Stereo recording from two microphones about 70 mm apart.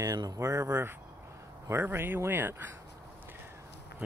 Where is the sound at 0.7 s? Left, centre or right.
Right.